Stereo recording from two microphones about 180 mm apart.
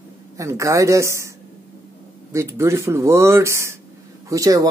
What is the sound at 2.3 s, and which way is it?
Speech, 15° right (ahead or behind).